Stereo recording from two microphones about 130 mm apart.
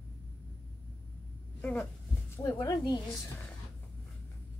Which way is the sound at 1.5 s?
10° left (ahead or behind).